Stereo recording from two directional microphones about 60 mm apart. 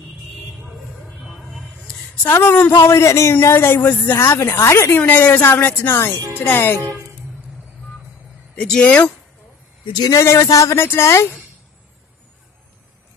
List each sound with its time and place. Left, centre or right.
0.7 s vehicle: centre
1.2 s a sound: centre
2.4 s a woman's voice: left
2.8 s a man's voice: left
3.4 s a woman's voice: left
4.2 s speech: left
4.5 s a man's voice: left
5.0 s a woman's voice: left
8.5 s speech: centre
10.2 s a man's voice: left
10.5 s speech: left
10.8 s a man's voice: left